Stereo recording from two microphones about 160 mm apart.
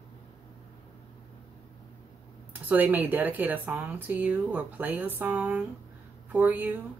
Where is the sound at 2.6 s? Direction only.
10° right (ahead or behind).